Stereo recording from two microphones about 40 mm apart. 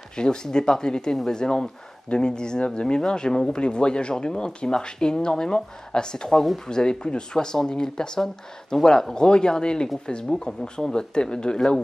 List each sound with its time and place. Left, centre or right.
0.1 s speech: centre